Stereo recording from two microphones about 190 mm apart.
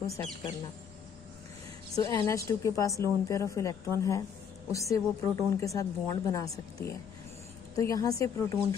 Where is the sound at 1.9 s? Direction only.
20° left (ahead or behind).